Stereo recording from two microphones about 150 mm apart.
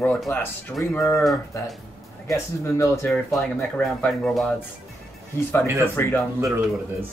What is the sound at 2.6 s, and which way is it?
Speech, 20° left (ahead or behind).